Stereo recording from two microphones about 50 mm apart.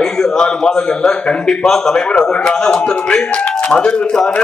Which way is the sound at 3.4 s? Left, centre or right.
Left.